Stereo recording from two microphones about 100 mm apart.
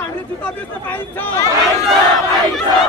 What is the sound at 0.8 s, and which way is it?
Speech, 20° left (ahead or behind).